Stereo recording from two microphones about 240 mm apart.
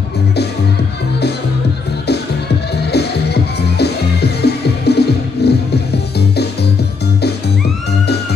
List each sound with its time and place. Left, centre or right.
2.9 s music: left